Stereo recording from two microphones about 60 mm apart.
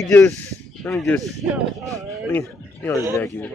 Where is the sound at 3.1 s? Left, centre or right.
Left.